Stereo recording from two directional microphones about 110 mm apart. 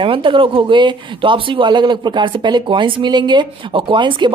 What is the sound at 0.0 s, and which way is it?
Speech, 50° right (ahead or behind).